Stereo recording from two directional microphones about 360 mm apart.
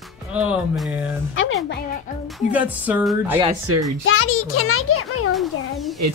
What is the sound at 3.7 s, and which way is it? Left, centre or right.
Speech, right.